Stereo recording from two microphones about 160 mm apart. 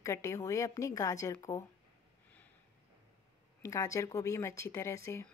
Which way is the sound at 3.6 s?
20° left (ahead or behind).